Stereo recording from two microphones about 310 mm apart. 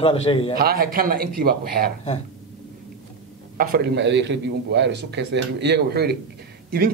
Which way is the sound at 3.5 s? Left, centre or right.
Right.